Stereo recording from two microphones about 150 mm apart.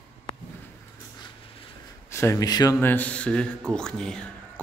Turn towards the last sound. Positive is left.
turn(degrees=5)  # may be behind; listen again after turning